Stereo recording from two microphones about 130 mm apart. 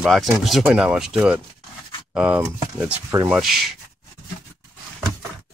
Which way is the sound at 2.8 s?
25° right (ahead or behind).